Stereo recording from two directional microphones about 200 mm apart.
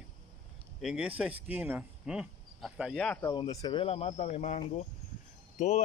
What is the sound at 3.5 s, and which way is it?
A man's voice, 20° left (ahead or behind).